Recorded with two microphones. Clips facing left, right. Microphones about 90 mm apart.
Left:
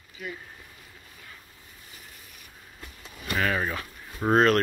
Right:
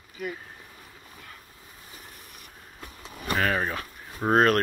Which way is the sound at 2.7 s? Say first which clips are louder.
Right 3 dB; 35° right (ahead or behind).